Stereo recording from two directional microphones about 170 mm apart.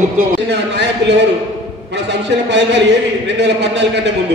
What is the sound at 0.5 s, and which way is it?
A man's voice, 90° right.